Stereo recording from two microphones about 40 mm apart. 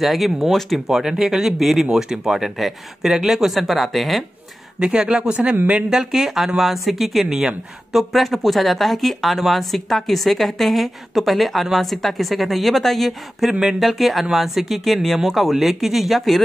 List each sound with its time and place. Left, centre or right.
0.0 s speech: centre
0.8 s speech: centre
3.5 s speech: centre
4.7 s speech: right
5.9 s speech: centre
7.2 s speech: centre
7.9 s speech: centre
13.5 s speech: centre
13.8 s speech: centre